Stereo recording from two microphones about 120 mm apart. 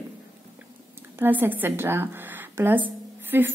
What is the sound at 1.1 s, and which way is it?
A woman's voice, 15° right (ahead or behind).